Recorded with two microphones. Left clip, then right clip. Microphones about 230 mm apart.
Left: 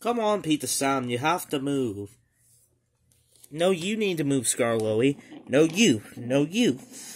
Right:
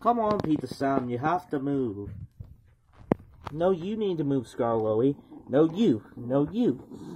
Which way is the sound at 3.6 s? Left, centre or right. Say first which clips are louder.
Left 2 dB; left.